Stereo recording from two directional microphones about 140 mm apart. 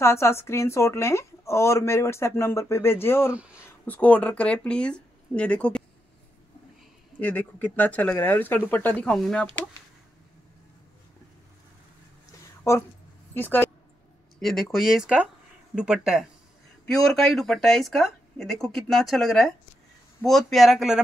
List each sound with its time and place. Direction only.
0.0 s speech: 20° left (ahead or behind)
7.2 s speech: 10° left (ahead or behind)
12.7 s speech: 20° left (ahead or behind)
14.4 s speech: centre (ahead or behind)